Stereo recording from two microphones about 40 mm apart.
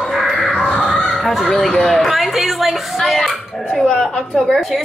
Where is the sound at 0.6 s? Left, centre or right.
Left.